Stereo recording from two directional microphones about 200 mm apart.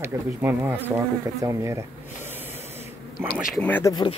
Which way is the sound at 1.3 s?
15° right (ahead or behind).